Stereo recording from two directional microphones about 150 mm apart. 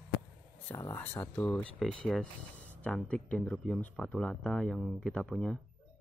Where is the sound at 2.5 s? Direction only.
55° left (ahead or behind).